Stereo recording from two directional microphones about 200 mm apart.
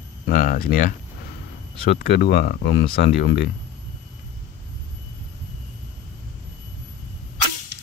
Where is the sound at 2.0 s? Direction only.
55° left (ahead or behind).